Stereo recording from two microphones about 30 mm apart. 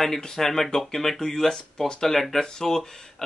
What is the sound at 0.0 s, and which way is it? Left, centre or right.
Speech, centre.